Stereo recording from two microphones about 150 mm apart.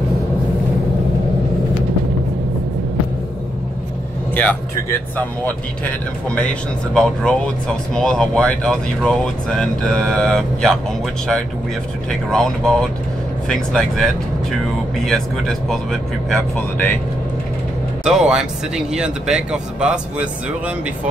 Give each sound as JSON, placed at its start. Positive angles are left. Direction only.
{"t": 4.3, "sound": "speech", "side_deg": 10}
{"t": 12.1, "sound": "speech", "side_deg": 5}
{"t": 16.5, "sound": "speech", "side_deg": 15}
{"t": 18.0, "sound": "speech", "side_deg": -5}